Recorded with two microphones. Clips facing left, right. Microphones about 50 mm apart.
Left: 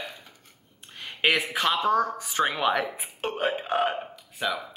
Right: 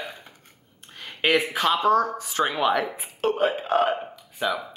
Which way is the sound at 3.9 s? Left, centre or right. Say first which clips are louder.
Right 5 dB; centre.